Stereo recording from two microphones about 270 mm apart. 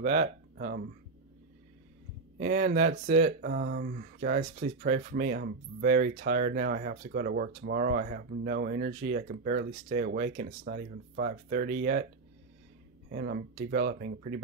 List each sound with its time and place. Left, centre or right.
0.0 s speech: right
2.3 s speech: right
13.1 s speech: right